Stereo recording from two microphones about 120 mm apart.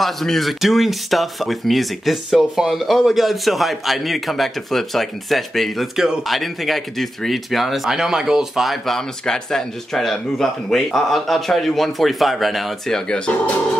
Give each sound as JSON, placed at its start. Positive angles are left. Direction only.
{"t": 0.0, "sound": "speech", "side_deg": 0}